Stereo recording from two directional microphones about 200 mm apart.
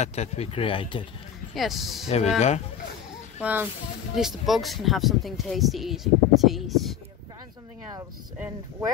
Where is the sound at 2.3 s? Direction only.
30° left (ahead or behind).